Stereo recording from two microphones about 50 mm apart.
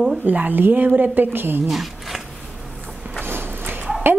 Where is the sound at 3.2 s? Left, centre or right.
Right.